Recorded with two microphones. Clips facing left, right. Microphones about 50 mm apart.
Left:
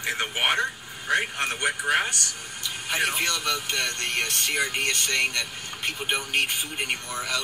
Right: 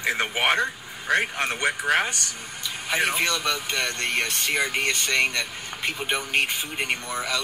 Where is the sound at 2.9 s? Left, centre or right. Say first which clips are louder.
Right 2 dB; right.